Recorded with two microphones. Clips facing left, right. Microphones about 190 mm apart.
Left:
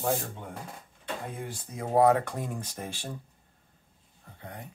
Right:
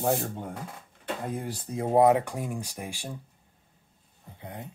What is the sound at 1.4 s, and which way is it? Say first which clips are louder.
Speech: right 5 dB; 35° right (ahead or behind).